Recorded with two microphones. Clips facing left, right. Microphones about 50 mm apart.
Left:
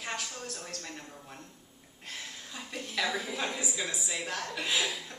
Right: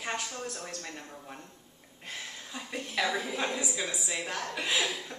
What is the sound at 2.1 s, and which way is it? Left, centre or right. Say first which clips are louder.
A woman's voice: right 2 dB; centre.